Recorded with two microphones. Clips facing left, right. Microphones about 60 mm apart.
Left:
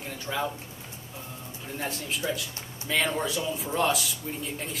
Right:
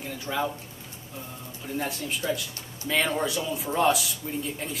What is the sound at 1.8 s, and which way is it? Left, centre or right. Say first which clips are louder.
Speech: right 1 dB; centre.